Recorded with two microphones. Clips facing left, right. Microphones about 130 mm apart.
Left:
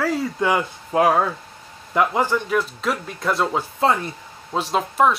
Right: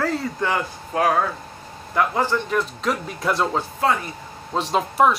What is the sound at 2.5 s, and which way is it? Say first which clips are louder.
Speech: left 1 dB; centre (ahead or behind).